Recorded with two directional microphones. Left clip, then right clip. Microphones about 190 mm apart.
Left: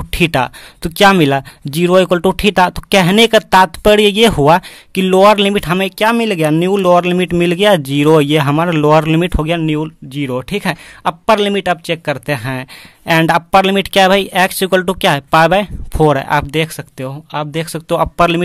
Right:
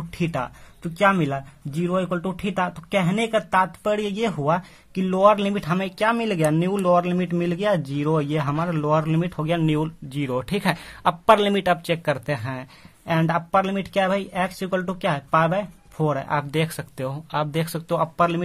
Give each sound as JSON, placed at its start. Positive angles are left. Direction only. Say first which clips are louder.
{"t": 0.2, "sound": "speech", "louder": "left 13 dB", "side_deg": 50}
{"t": 9.6, "sound": "speech", "louder": "left 6 dB", "side_deg": 25}